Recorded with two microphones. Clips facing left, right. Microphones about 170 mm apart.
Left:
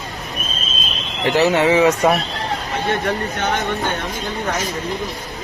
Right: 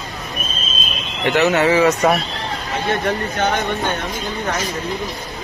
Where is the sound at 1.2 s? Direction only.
35° left (ahead or behind).